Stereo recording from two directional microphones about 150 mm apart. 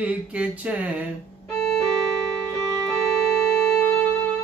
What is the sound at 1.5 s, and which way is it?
Music, 5° left (ahead or behind).